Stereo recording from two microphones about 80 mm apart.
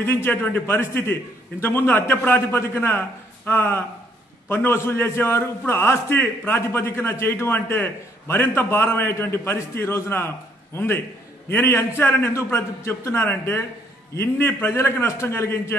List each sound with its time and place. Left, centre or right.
0.0 s a man's voice: left